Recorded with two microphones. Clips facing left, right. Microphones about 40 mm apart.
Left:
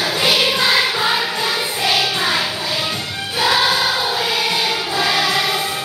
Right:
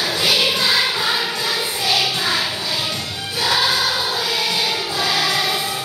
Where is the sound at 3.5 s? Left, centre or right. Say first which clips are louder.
Even; centre.